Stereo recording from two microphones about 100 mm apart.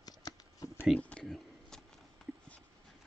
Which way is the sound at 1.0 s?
10° left (ahead or behind).